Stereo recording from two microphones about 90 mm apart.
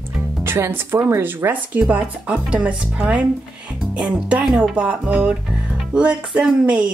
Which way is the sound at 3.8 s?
10° right (ahead or behind).